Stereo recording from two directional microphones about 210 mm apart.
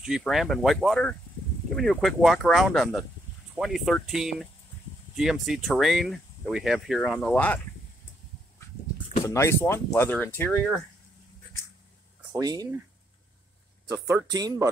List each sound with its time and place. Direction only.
0.0 s speech: centre (ahead or behind)
9.2 s speech: 15° left (ahead or behind)
12.3 s speech: 15° right (ahead or behind)
13.9 s speech: 15° right (ahead or behind)